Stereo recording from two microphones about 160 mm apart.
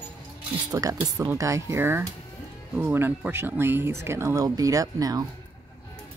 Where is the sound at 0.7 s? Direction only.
20° right (ahead or behind).